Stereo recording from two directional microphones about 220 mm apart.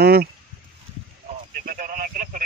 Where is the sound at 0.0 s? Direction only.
45° right (ahead or behind).